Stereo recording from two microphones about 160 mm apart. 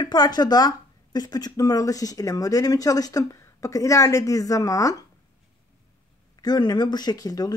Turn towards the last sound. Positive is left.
turn(degrees=25)  # may be behind; listen again after turning